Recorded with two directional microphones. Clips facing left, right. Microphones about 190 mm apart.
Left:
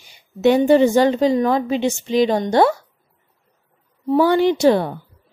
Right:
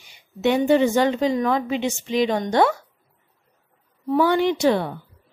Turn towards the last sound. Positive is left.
turn(degrees=40)  # may be behind; listen again after turning